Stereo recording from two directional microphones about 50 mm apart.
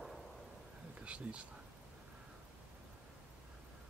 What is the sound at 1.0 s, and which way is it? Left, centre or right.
Speech, right.